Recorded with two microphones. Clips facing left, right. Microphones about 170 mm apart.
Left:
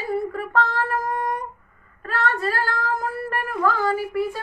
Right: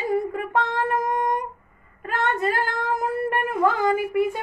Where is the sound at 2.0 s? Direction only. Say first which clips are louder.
Even; 20° right (ahead or behind).